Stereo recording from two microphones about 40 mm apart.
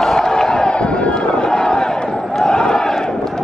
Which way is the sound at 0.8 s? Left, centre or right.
Left.